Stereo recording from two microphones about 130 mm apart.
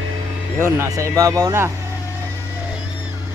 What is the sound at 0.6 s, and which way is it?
Speech, 20° right (ahead or behind).